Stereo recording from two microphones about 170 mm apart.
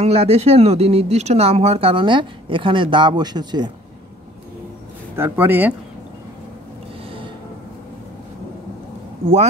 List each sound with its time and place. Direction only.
0.0 s speech: 35° right (ahead or behind)
5.1 s speech: 15° right (ahead or behind)